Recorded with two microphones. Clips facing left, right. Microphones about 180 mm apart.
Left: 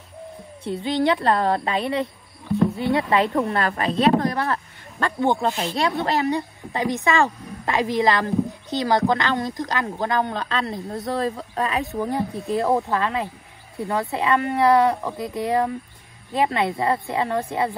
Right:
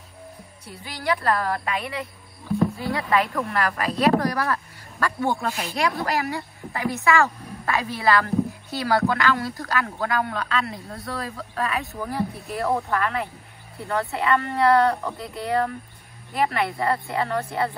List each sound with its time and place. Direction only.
0.7 s speech: 25° left (ahead or behind)